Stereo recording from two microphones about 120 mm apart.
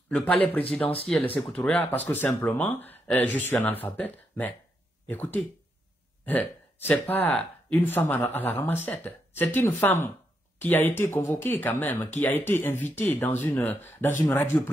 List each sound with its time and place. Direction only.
0.1 s speech: 10° left (ahead or behind)